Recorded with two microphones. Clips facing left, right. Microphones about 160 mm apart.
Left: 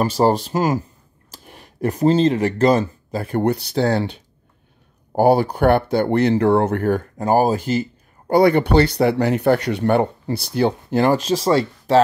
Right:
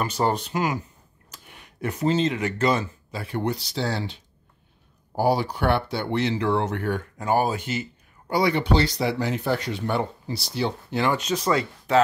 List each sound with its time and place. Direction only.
0.2 s speech: 35° left (ahead or behind)
8.3 s speech: 50° left (ahead or behind); by 12.0 s 30° left (ahead or behind)